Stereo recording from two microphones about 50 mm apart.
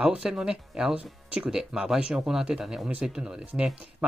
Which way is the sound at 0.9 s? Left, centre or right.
Right.